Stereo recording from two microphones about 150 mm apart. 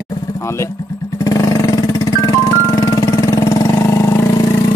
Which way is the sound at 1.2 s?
20° left (ahead or behind).